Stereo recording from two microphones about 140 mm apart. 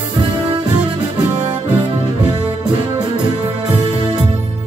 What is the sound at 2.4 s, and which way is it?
Music, 30° right (ahead or behind).